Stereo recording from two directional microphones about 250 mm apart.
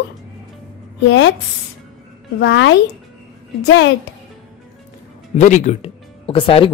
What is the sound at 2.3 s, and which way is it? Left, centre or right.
Speech, left.